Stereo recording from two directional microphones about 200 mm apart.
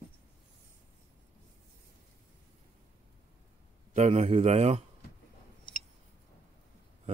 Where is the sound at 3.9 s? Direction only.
35° right (ahead or behind).